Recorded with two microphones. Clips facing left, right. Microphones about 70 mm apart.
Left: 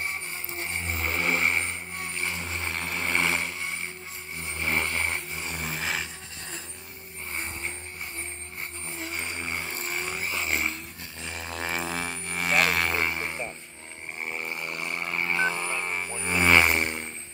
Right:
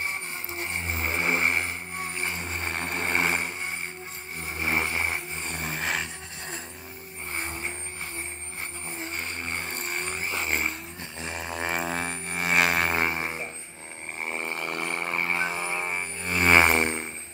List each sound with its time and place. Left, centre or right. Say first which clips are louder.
0.5 s vehicle: right 1 dB; centre
4.4 s vehicle: right 1 dB; centre
5.3 s vehicle: right 1 dB; centre
9.0 s vehicle: left 1 dB; centre
11.2 s music: right 2 dB; centre
13.1 s didgeridoo: right 2 dB; centre
14.3 s a sound: right 4 dB; right
15.1 s frog: left 3 dB; right
16.5 s a sound: right 2 dB; right